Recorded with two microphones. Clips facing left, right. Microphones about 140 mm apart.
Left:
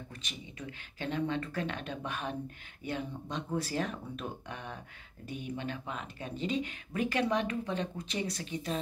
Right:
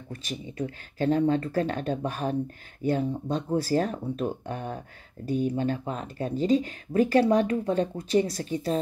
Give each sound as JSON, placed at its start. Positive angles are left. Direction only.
{"t": 0.1, "sound": "speech", "side_deg": -40}